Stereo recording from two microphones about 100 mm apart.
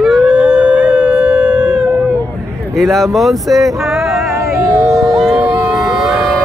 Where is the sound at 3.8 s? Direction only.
Centre (ahead or behind).